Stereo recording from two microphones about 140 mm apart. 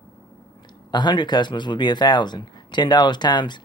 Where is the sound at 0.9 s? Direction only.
30° left (ahead or behind).